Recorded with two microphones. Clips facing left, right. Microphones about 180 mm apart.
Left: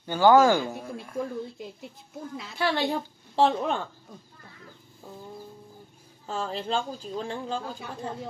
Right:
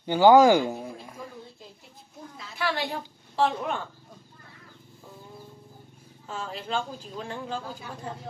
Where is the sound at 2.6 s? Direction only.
30° left (ahead or behind).